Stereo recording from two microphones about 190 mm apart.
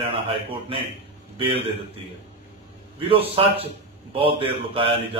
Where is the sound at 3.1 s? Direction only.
30° right (ahead or behind).